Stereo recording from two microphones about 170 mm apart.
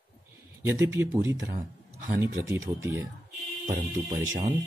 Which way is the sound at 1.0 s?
15° right (ahead or behind).